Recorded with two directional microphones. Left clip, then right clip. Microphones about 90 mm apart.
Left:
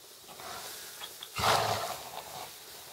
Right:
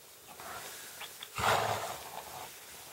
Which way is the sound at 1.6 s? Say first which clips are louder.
Left 2 dB; 15° left (ahead or behind).